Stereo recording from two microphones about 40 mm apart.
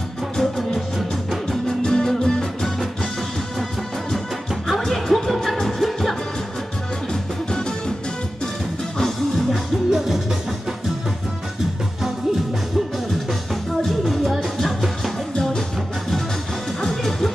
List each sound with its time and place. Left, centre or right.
0.4 s music: centre
4.6 s music: centre
9.5 s music: centre
13.8 s music: centre
15.3 s music: centre
16.8 s music: centre